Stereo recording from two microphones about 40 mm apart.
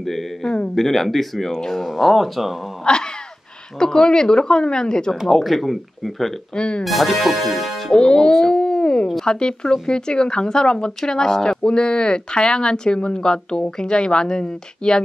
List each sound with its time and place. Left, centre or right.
0.0 s a sound: centre
0.7 s speech: centre
1.8 s speech: centre
2.9 s speech: centre
5.2 s speech: centre
6.5 s speech: left
6.8 s speech: centre
7.9 s speech: centre
8.4 s a sound: centre
9.2 s speech: left